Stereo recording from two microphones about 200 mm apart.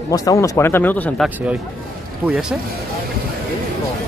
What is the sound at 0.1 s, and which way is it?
Speech, 15° left (ahead or behind).